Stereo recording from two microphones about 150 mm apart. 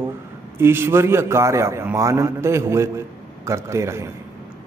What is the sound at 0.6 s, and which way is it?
A man's voice, 15° right (ahead or behind).